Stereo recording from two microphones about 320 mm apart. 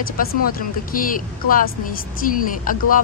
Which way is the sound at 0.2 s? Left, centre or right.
Left.